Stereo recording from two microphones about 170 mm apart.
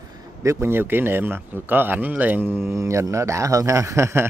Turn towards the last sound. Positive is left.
turn(degrees=-15)  # may be behind; listen again after turning